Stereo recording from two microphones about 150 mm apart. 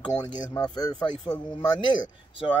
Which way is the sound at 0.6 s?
25° left (ahead or behind).